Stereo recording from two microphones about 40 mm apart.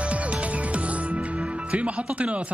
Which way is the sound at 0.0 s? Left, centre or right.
Right.